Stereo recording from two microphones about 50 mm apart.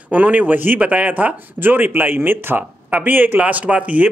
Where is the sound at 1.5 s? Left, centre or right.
Right.